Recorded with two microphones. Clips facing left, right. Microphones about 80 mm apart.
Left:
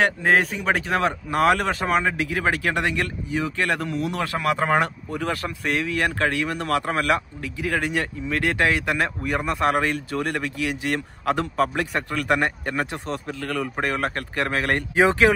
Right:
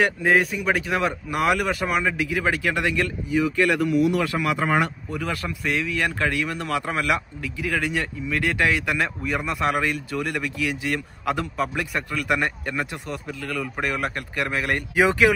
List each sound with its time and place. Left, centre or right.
0.0 s speech: left
11.5 s speech: left
13.3 s speech: left